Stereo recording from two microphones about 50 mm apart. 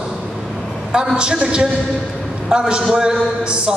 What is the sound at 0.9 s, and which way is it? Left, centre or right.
A man's voice, centre.